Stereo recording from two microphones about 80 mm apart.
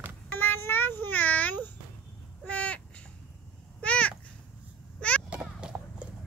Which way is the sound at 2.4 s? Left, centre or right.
Centre.